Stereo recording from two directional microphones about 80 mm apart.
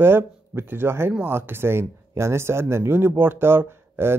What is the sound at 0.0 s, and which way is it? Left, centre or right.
Speech, right.